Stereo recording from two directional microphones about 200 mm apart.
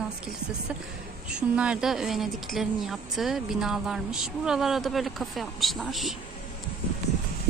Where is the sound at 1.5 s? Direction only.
5° right (ahead or behind).